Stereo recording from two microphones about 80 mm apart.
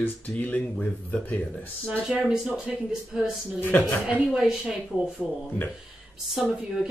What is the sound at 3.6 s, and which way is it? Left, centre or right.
Speech, left.